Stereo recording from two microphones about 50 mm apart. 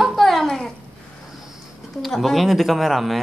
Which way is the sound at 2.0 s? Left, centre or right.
Centre.